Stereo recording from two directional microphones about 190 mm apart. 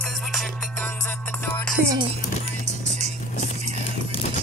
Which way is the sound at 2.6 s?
35° right (ahead or behind).